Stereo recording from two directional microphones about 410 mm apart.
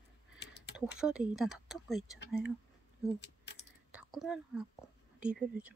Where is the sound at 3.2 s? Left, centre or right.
Left.